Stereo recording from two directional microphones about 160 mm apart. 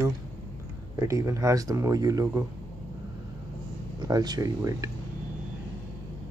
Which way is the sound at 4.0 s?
25° right (ahead or behind).